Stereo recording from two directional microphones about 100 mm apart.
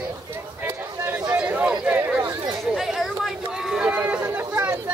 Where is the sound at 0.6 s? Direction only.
20° right (ahead or behind).